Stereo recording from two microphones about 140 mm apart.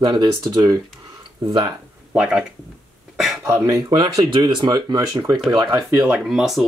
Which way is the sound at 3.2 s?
Centre (ahead or behind).